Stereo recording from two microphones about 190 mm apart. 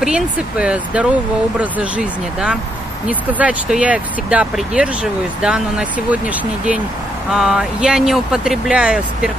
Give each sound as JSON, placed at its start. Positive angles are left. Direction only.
{"t": 0.0, "sound": "speech", "side_deg": -5}